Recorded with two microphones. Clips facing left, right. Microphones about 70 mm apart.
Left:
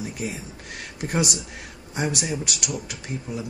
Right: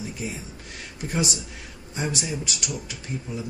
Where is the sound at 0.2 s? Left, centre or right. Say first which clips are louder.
Left 2 dB; left.